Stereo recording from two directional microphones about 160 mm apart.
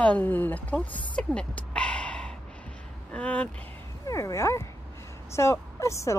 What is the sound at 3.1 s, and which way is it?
Speech, 10° left (ahead or behind).